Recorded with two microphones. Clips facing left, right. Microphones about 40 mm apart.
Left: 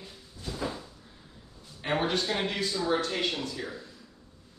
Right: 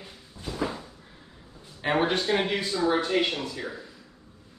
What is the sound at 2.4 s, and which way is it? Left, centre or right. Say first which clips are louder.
Speech: right 4 dB; centre.